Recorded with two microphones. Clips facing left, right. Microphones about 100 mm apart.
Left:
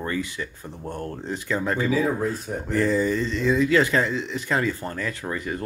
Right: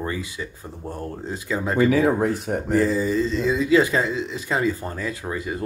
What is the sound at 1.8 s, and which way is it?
Speech, 75° right (ahead or behind).